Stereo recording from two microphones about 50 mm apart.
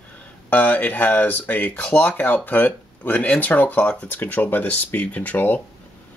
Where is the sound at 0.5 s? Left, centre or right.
Left.